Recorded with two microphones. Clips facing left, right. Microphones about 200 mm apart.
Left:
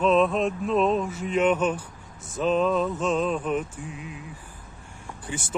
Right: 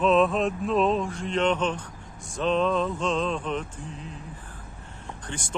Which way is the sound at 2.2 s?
5° left (ahead or behind).